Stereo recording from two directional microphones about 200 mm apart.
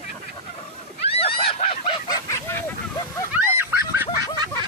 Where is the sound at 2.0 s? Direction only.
15° left (ahead or behind).